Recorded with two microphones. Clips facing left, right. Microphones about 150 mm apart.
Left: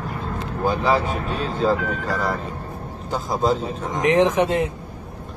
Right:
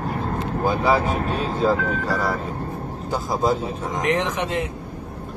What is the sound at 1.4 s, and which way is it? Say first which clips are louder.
Speech: right 1 dB; 40° right (ahead or behind).